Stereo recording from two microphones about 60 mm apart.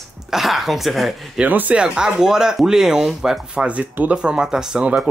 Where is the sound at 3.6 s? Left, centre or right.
Right.